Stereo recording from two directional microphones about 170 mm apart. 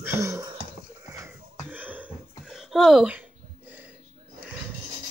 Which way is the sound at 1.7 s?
10° right (ahead or behind).